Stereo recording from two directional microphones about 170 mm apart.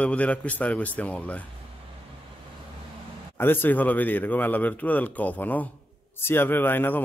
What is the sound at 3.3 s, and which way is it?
A man's voice, 10° left (ahead or behind).